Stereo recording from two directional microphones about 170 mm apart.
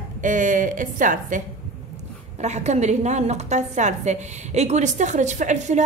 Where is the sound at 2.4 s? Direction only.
40° right (ahead or behind).